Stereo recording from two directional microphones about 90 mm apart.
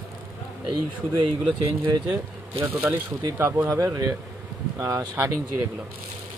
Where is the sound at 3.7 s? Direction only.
40° right (ahead or behind).